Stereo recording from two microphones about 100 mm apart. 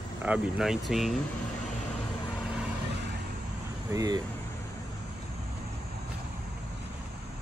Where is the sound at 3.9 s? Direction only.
40° right (ahead or behind).